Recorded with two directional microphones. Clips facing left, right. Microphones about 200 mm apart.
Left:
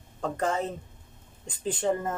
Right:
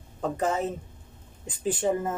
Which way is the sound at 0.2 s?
5° right (ahead or behind).